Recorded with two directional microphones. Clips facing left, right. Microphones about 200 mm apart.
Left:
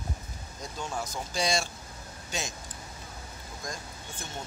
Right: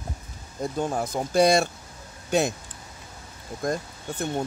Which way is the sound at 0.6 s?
55° right (ahead or behind).